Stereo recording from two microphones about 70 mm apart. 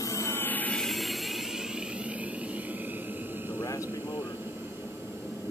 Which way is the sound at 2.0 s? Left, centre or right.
Right.